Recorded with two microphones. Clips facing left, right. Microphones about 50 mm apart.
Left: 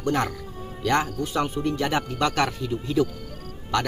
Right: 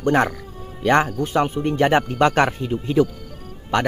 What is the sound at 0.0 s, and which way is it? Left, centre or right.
Speech, right.